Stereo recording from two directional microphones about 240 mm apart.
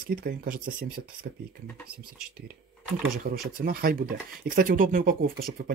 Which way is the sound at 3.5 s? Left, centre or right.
Right.